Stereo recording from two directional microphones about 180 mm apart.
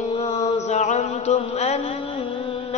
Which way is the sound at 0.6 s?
40° left (ahead or behind).